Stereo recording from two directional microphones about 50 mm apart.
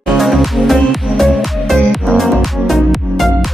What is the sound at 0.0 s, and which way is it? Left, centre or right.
Music, centre.